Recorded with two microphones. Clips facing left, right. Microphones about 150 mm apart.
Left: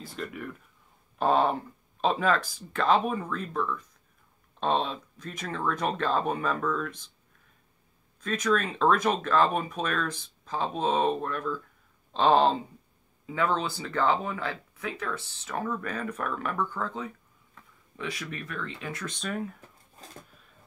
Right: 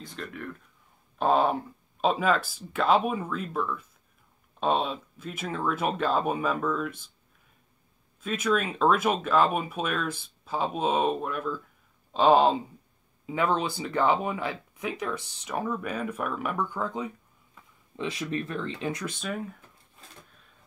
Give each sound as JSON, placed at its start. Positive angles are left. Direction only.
{"t": 0.0, "sound": "speech", "side_deg": 5}
{"t": 8.2, "sound": "speech", "side_deg": -10}
{"t": 19.0, "sound": "speech", "side_deg": -5}